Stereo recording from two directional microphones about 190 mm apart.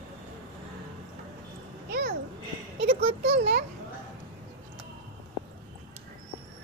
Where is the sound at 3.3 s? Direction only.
65° right (ahead or behind).